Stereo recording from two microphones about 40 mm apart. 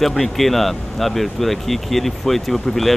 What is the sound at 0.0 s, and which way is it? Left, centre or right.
Speech, centre.